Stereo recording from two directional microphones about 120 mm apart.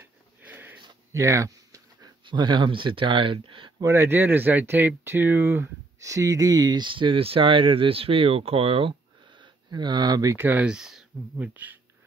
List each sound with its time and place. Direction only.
0.4 s sniff: 15° right (ahead or behind)
1.1 s speech: 25° right (ahead or behind); by 3.7 s 45° right (ahead or behind)
3.8 s speech: 20° right (ahead or behind); by 8.9 s 50° right (ahead or behind)
9.4 s speech: 40° right (ahead or behind)
10.3 s speech: 15° right (ahead or behind)